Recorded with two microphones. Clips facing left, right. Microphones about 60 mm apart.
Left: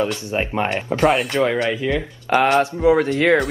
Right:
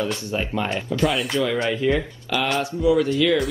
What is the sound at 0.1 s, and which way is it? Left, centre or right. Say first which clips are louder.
Speech: left 3 dB; left.